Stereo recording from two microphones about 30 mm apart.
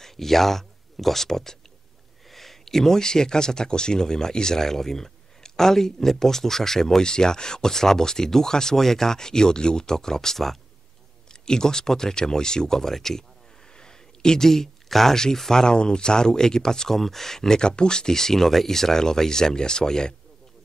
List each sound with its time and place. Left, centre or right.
0.0 s speech: centre
11.4 s speech: left
13.7 s a sound: left
15.3 s speech: centre
15.6 s speech: left
17.6 s speech: left